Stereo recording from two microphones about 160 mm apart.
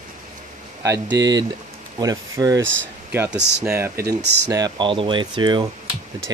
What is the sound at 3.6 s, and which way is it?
Speech, 10° right (ahead or behind).